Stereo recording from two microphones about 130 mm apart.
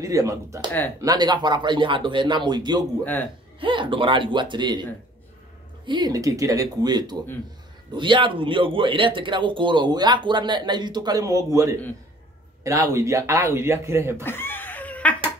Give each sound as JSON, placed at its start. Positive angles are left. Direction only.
{"t": 0.0, "sound": "speech", "side_deg": -25}
{"t": 5.9, "sound": "speech", "side_deg": -35}
{"t": 14.2, "sound": "a sound", "side_deg": 15}